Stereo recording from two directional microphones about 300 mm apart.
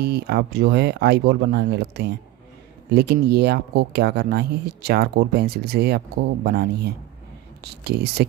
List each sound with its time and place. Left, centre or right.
0.0 s speech: right